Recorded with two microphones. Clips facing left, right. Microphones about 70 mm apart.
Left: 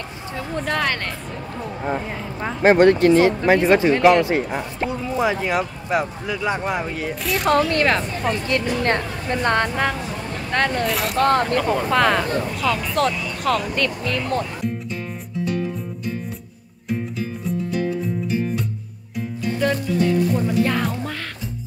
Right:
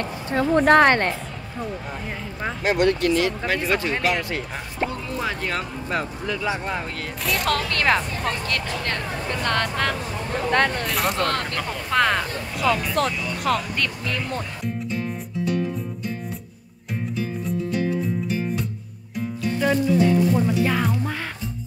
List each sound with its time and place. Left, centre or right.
0.6 s speech: right
2.6 s speech: left; by 7.7 s centre
7.8 s speech: centre
8.5 s speech: centre
10.5 s speech: centre
11.1 s speech: left
11.9 s speech: centre
17.6 s music: centre
19.1 s speech: centre